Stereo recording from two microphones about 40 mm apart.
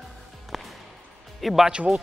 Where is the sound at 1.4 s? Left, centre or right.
Centre.